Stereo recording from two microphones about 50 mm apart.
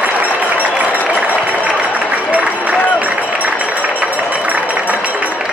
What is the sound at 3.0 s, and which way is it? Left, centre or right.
Run, right.